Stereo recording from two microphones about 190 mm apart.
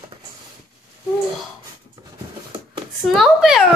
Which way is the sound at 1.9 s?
25° right (ahead or behind).